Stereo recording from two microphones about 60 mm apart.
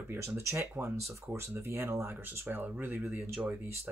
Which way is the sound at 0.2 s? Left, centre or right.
Right.